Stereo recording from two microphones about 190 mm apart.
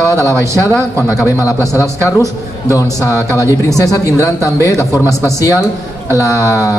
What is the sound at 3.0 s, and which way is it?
Speech, 15° left (ahead or behind).